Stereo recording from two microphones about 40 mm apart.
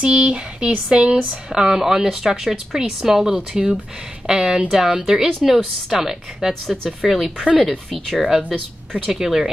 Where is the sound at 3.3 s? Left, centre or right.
Right; by 8.3 s centre.